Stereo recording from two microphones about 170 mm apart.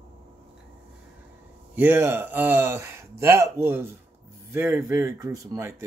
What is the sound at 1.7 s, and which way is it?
Speech, 10° right (ahead or behind).